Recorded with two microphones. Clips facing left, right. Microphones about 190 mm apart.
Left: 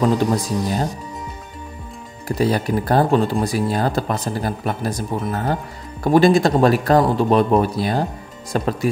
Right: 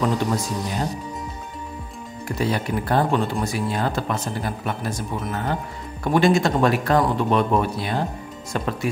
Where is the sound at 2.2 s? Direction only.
35° left (ahead or behind).